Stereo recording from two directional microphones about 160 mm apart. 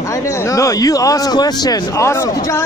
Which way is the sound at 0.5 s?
20° left (ahead or behind).